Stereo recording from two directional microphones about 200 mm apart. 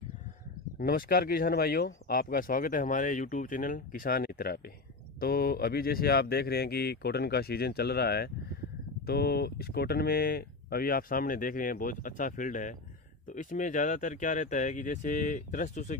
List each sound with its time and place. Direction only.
0.7 s speech: 45° left (ahead or behind)